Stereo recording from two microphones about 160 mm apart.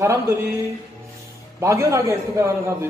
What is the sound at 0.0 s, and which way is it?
Speech, 15° right (ahead or behind).